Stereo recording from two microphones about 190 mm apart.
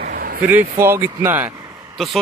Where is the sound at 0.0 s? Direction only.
50° right (ahead or behind).